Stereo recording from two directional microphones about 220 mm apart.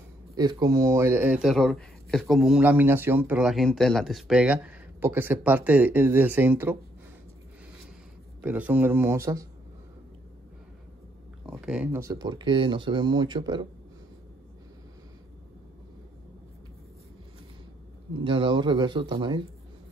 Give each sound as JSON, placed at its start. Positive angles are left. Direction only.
{"t": 0.3, "sound": "speech", "side_deg": -15}
{"t": 8.4, "sound": "speech", "side_deg": -5}
{"t": 11.5, "sound": "speech", "side_deg": -5}
{"t": 18.2, "sound": "speech", "side_deg": -25}